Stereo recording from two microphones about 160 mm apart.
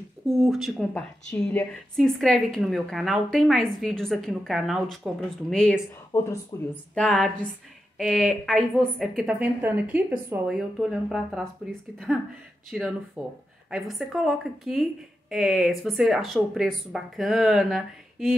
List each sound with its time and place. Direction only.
0.4 s speech: centre (ahead or behind)